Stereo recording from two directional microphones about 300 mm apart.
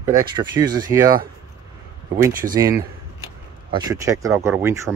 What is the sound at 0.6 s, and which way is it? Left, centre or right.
Speech, centre.